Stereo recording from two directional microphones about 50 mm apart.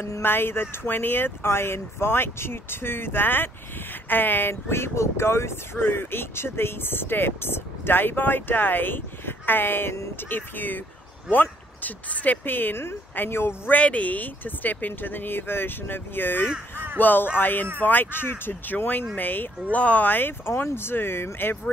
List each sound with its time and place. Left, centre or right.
0.2 s speech: left
11.8 s speech: left
13.7 s speech: left